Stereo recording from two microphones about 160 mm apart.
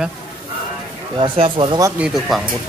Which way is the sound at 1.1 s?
35° right (ahead or behind).